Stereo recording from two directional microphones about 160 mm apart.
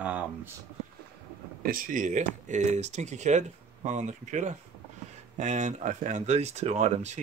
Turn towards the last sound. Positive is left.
turn(degrees=-45)  # may be behind; listen again after turning